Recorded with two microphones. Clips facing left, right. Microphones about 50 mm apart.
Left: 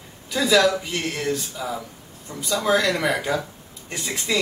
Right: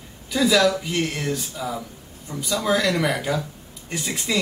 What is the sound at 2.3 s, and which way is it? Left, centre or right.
Speech, right.